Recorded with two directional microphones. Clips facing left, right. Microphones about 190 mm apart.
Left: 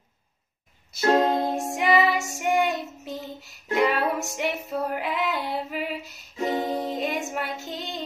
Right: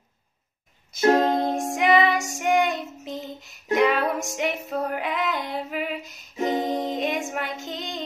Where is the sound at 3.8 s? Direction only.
5° left (ahead or behind).